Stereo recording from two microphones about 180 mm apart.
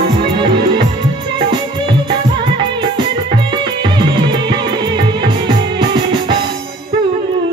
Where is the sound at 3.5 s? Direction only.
25° right (ahead or behind).